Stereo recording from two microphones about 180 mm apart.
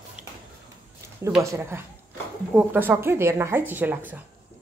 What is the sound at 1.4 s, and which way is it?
Speech, 15° right (ahead or behind).